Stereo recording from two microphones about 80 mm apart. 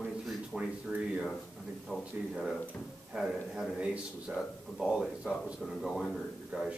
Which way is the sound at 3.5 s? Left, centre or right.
Centre.